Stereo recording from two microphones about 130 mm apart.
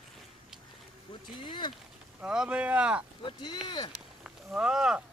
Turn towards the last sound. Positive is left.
turn(degrees=-5)  # may be behind; listen again after turning